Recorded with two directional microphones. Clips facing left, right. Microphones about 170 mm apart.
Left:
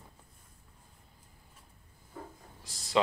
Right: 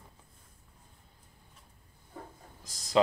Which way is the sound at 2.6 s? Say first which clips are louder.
Right 2 dB; 40° right (ahead or behind).